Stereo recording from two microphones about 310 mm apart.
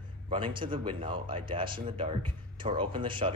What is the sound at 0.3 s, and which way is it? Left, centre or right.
Speech, centre.